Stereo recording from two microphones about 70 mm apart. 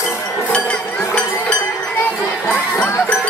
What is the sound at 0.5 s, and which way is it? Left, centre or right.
Chink, centre.